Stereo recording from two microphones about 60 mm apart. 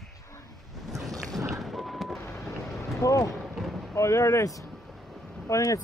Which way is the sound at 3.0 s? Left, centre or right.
Left.